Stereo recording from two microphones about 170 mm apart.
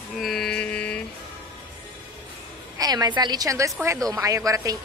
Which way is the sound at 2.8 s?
25° right (ahead or behind).